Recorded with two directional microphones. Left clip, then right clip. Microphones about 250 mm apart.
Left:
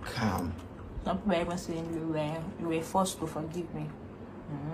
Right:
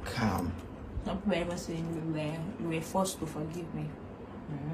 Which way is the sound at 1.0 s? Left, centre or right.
Centre.